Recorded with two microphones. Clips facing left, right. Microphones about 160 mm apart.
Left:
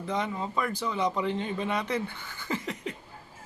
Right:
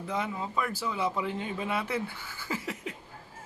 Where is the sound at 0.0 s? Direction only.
5° right (ahead or behind).